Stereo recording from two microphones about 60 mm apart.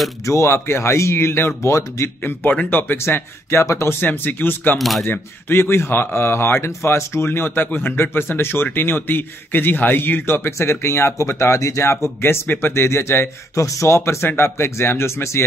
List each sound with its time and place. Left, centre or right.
0.2 s speech: left
1.6 s speech: left
2.5 s speech: left
3.0 s speech: left
4.0 s speech: left
4.7 s speech: centre
5.0 s speech: left
13.6 s speech: left